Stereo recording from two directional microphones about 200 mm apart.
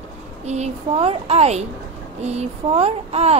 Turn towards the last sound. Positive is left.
turn(degrees=-30)  # may be behind; listen again after turning